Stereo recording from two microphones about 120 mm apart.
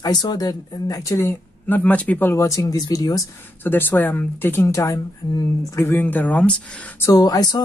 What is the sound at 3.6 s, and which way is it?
Speech, 15° left (ahead or behind).